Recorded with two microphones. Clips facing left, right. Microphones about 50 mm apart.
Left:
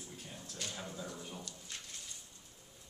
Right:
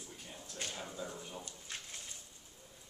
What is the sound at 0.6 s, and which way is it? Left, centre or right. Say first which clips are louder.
Speech: right 1 dB; right.